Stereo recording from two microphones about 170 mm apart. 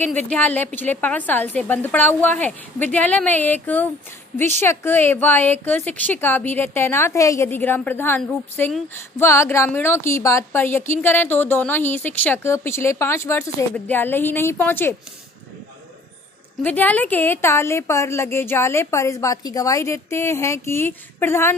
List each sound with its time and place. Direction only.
0.0 s a woman's voice: 10° left (ahead or behind)
16.6 s a woman's voice: 10° left (ahead or behind)